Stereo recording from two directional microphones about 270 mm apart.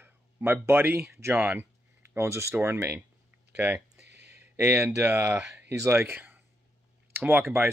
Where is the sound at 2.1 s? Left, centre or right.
Centre.